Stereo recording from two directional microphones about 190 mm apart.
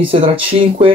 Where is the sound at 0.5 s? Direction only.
30° right (ahead or behind).